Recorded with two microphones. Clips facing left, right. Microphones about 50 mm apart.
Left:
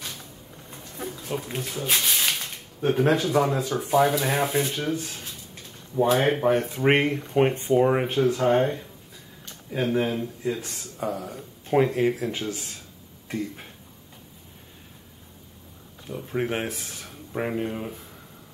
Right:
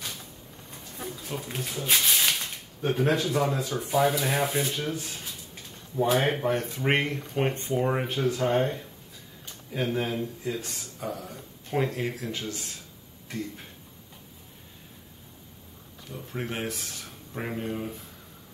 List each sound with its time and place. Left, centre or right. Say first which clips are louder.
0.0 s speech: left 1 dB; centre
11.0 s speech: left 6 dB; centre
16.1 s speech: left 7 dB; centre